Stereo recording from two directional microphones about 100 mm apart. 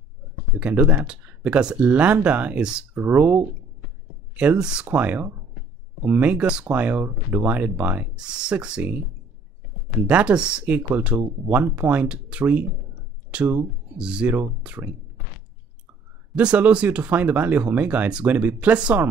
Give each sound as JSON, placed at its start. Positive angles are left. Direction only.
{"t": 0.6, "sound": "speech", "side_deg": -10}
{"t": 10.0, "sound": "speech", "side_deg": -10}
{"t": 16.3, "sound": "speech", "side_deg": -15}